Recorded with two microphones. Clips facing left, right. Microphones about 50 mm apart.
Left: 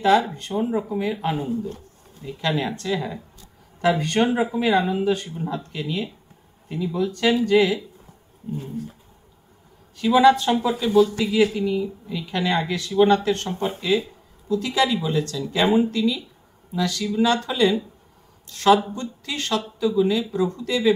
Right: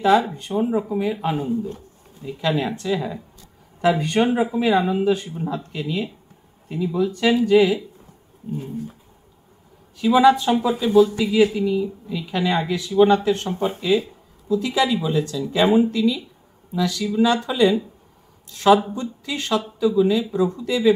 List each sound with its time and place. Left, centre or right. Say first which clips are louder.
0.0 s speech: right 1 dB; centre
9.9 s speech: right 1 dB; centre